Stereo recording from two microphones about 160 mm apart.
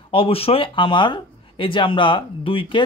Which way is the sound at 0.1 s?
35° left (ahead or behind).